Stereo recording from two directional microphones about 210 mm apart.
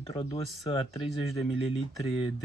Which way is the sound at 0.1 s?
25° left (ahead or behind).